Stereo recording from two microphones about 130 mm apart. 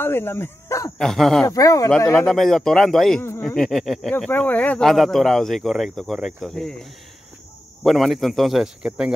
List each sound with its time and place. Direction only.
0.0 s speech: 15° left (ahead or behind)
0.9 s speech: centre (ahead or behind)
1.5 s speech: 25° left (ahead or behind)
2.2 s speech: 5° left (ahead or behind)
3.2 s speech: 20° left (ahead or behind)
3.4 s speech: centre (ahead or behind)
4.3 s speech: 15° left (ahead or behind); by 9.1 s 5° right (ahead or behind)